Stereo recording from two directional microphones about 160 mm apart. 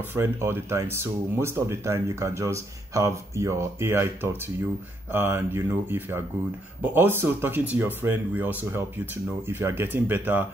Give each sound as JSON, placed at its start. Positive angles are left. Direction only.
{"t": 0.1, "sound": "speech", "side_deg": -15}